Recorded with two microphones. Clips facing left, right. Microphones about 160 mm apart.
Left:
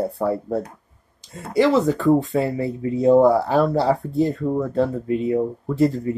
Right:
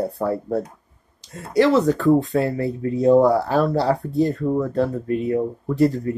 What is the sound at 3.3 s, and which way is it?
Speech, 20° left (ahead or behind).